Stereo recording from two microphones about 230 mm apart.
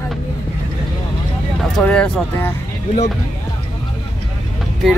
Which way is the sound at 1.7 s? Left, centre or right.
Centre.